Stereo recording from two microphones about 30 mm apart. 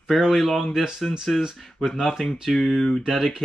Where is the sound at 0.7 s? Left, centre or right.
Centre.